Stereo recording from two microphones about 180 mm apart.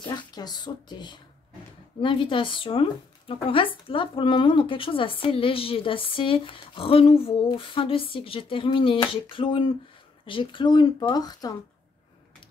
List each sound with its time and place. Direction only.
0.3 s a woman's voice: 20° left (ahead or behind)